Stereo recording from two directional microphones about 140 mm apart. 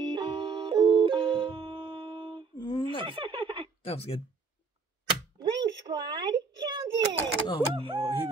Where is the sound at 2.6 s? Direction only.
30° left (ahead or behind).